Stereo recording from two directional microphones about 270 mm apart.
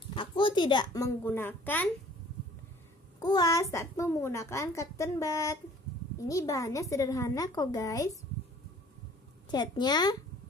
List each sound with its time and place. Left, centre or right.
0.1 s speech: centre
3.2 s a child's voice: centre
9.5 s a child's voice: centre